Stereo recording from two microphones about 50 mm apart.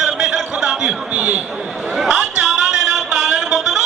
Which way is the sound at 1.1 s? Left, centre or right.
Right.